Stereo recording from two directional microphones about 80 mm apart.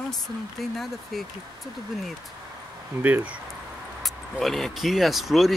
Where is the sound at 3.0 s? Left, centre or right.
Centre.